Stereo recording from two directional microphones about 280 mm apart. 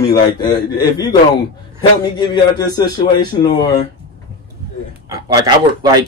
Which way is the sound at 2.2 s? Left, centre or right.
Centre.